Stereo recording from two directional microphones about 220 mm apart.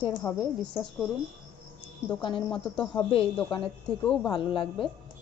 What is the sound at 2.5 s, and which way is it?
A woman's voice, 5° left (ahead or behind).